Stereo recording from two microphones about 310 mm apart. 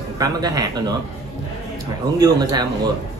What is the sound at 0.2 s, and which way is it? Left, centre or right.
Speech, centre.